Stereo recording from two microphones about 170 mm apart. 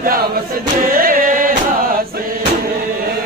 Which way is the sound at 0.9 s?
55° right (ahead or behind).